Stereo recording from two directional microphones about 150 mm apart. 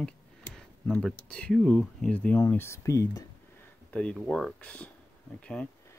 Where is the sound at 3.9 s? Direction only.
5° left (ahead or behind).